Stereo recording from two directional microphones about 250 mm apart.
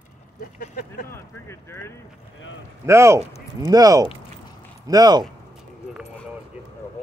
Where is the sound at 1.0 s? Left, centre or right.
Centre.